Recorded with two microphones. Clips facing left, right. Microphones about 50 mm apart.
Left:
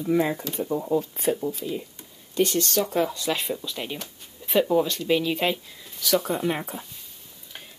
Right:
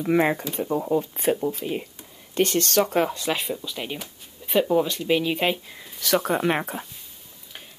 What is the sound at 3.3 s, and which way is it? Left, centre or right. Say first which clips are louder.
Speech: even; centre.